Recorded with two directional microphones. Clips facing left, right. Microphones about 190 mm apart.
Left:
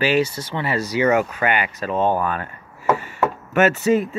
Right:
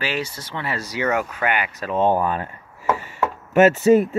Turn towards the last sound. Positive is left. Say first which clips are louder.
# right 3 dB
turn(degrees=-30)  # may be behind; listen again after turning